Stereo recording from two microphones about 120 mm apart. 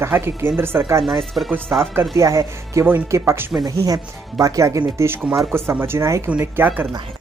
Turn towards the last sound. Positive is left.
turn(degrees=-20)  # may be behind; listen again after turning